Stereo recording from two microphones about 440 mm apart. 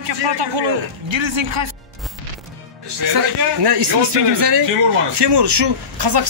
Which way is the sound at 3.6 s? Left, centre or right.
Right.